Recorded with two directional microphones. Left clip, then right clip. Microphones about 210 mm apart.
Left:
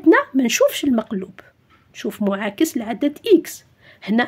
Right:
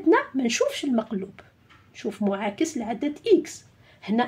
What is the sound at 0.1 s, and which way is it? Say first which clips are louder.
Speech: left 6 dB; 40° left (ahead or behind).